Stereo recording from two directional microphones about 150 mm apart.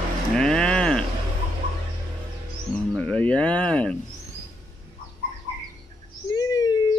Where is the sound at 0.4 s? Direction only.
5° left (ahead or behind).